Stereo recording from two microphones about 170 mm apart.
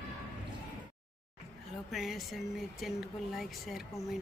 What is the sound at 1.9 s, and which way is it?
Speech, centre (ahead or behind).